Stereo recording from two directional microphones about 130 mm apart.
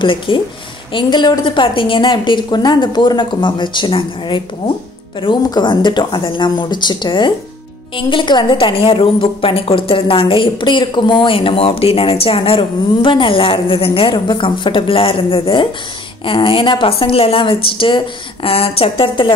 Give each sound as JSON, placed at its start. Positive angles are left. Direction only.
{"t": 0.0, "sound": "a woman's voice", "side_deg": 40}